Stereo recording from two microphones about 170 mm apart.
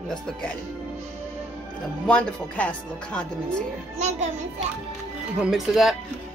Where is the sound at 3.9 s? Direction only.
40° right (ahead or behind).